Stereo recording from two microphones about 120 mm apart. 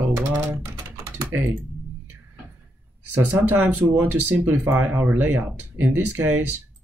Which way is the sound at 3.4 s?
20° right (ahead or behind).